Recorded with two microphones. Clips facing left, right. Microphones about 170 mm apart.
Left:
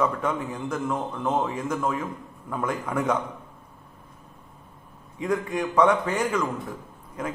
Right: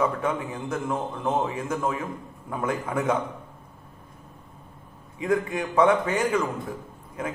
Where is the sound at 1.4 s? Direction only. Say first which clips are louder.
Even; 25° right (ahead or behind).